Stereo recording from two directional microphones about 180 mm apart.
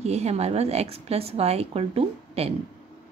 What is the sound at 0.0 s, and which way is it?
Speech, 35° right (ahead or behind).